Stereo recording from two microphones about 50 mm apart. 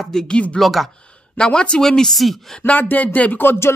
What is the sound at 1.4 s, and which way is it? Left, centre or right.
Speech, centre.